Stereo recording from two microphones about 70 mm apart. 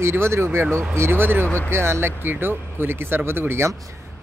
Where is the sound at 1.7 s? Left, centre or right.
Right.